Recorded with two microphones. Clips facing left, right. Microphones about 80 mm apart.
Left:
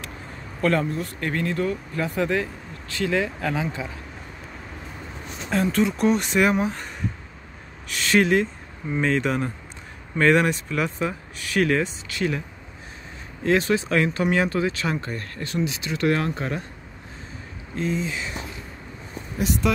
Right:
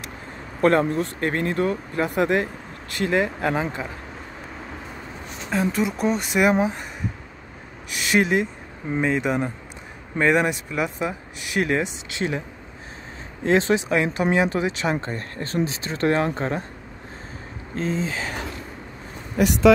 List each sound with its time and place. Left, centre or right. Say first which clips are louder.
0.6 s speech: right 4 dB; right
2.0 s speech: right 3 dB; right
5.5 s speech: left 1 dB; centre
7.9 s speech: left 1 dB; centre; by 16.6 s right
17.7 s speech: right 1 dB; right
19.3 s speech: right 4 dB; right